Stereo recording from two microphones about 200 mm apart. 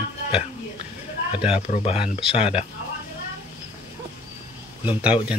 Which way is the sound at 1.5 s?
30° left (ahead or behind).